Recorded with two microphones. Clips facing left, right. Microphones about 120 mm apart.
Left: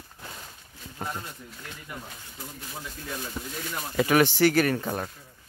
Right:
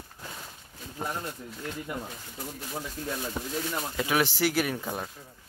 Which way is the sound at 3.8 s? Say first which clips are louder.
Left 6 dB; centre (ahead or behind).